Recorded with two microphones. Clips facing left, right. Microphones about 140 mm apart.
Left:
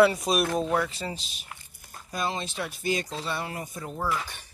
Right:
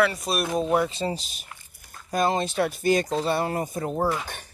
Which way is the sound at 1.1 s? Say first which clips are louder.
Right 5 dB; 45° right (ahead or behind).